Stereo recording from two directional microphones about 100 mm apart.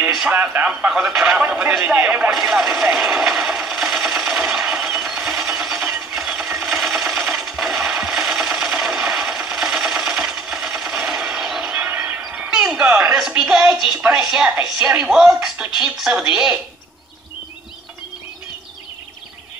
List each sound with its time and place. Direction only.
0.3 s a woman's voice: 20° right (ahead or behind)
1.4 s speech: 20° right (ahead or behind)
1.7 s a woman's voice: 10° right (ahead or behind)
2.3 s a sound: 5° right (ahead or behind)
7.2 s coin: centre (ahead or behind)
11.7 s a sound: 20° right (ahead or behind)
12.2 s music: 10° right (ahead or behind)
13.3 s a woman's voice: 5° right (ahead or behind)